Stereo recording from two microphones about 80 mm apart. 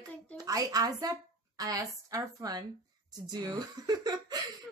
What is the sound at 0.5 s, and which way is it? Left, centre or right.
Speech, right.